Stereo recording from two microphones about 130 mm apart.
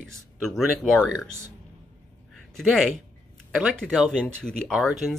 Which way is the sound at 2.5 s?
Centre (ahead or behind).